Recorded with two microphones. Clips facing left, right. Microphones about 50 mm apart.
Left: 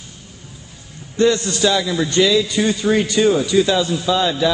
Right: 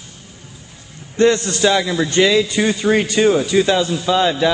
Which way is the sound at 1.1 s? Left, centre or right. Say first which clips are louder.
Right 2 dB; right.